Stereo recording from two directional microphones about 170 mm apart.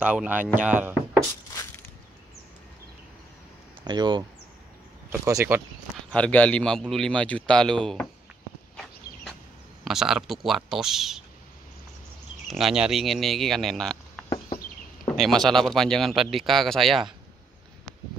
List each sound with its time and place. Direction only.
0.0 s speech: 10° right (ahead or behind)
1.5 s a sound: 15° left (ahead or behind)
3.8 s speech: 25° right (ahead or behind)
5.2 s speech: 15° right (ahead or behind)
6.1 s speech: 5° left (ahead or behind)
9.8 s speech: centre (ahead or behind)
12.4 s speech: centre (ahead or behind)